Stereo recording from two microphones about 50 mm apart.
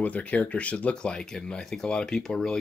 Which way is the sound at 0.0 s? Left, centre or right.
Left.